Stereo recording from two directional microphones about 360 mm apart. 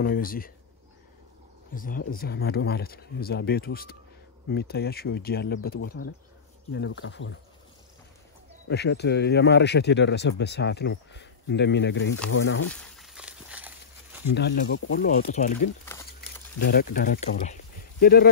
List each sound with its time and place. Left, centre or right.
0.0 s speech: left
1.8 s speech: left
8.6 s speech: left
12.6 s a sound: centre
14.3 s speech: left
15.8 s crumpling: centre
16.5 s speech: left